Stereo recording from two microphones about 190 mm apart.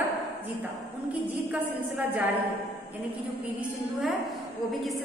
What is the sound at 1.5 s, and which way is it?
Speech, 10° right (ahead or behind).